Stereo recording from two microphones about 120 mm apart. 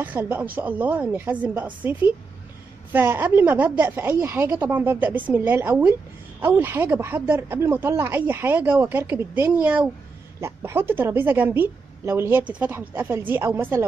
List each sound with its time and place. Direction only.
0.0 s speech: 15° right (ahead or behind)